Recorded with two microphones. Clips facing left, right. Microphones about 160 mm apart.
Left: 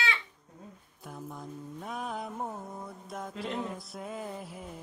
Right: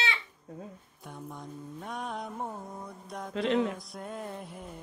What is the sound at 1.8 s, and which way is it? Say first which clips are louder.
Mantra: even; centre (ahead or behind).